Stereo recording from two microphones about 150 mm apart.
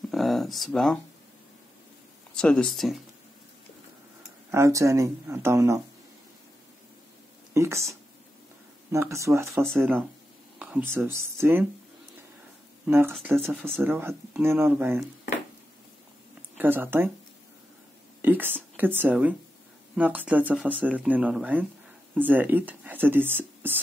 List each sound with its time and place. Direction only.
0.1 s a sound: centre (ahead or behind)
2.3 s speech: 5° left (ahead or behind)
4.5 s speech: 20° right (ahead or behind)
7.5 s speech: 20° right (ahead or behind)
12.8 s speech: 15° right (ahead or behind)
16.5 s speech: 15° right (ahead or behind)
18.2 s speech: 10° right (ahead or behind)